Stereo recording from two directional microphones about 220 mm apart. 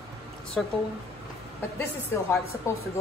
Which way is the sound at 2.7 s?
15° left (ahead or behind).